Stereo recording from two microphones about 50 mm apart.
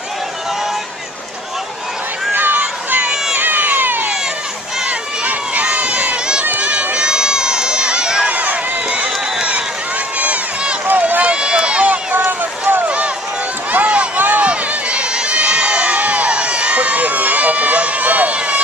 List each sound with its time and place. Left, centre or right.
2.3 s a sound: right
3.3 s cat: right
4.8 s run: right
6.6 s crowd: right
8.3 s run: right
10.1 s crowd: right
10.9 s run: right
11.3 s run: centre
12.1 s boat: right
12.8 s run: right
14.4 s crowd: right